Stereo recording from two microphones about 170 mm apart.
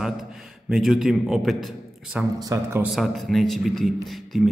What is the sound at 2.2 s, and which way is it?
Speech, 20° right (ahead or behind).